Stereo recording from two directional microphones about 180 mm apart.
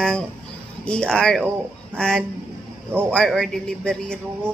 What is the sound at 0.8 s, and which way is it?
A woman's voice, 5° left (ahead or behind).